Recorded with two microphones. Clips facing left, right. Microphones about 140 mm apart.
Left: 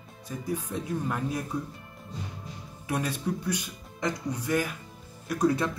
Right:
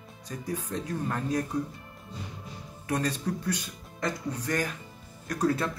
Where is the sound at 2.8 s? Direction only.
10° left (ahead or behind).